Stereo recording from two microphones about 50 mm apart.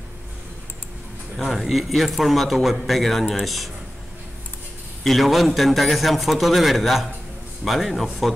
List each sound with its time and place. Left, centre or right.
1.3 s speech: centre
5.0 s speech: centre